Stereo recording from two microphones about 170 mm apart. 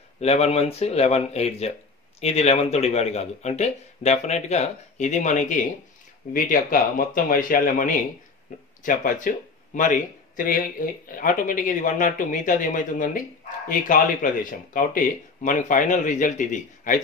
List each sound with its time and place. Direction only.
0.2 s speech: 40° left (ahead or behind)